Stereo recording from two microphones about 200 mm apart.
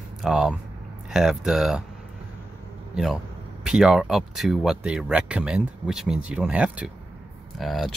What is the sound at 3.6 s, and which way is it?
Speech, 5° right (ahead or behind).